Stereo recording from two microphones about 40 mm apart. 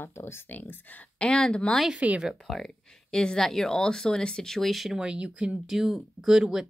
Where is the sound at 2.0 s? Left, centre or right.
Right.